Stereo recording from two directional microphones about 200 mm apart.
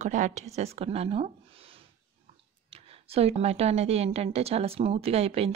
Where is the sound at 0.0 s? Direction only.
35° right (ahead or behind).